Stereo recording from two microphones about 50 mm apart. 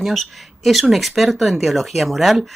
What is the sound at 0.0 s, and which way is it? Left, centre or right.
Speech, centre.